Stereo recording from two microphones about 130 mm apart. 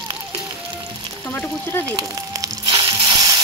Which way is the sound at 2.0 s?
30° right (ahead or behind).